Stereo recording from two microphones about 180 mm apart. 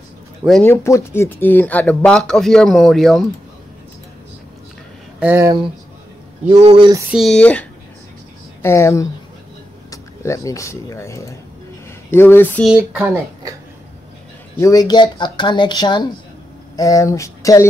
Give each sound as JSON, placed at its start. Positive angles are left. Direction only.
{"t": 0.7, "sound": "speech", "side_deg": 15}
{"t": 5.2, "sound": "speech", "side_deg": -10}
{"t": 6.5, "sound": "speech", "side_deg": -35}
{"t": 7.1, "sound": "speech", "side_deg": 0}
{"t": 8.6, "sound": "a sound", "side_deg": 15}
{"t": 9.8, "sound": "speech", "side_deg": 15}
{"t": 12.1, "sound": "a sound", "side_deg": 10}
{"t": 12.6, "sound": "speech", "side_deg": -10}
{"t": 14.6, "sound": "speech", "side_deg": 20}